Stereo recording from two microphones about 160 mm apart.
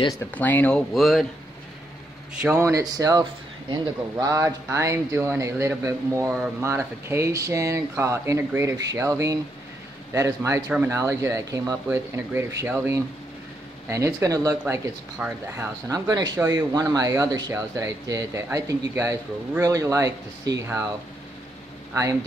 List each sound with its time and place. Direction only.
0.2 s speech: 10° left (ahead or behind)
2.4 s speech: 15° right (ahead or behind)